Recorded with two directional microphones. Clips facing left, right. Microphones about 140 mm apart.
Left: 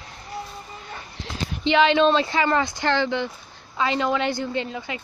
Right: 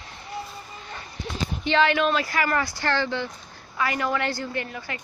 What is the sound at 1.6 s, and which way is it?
Speech, 20° left (ahead or behind).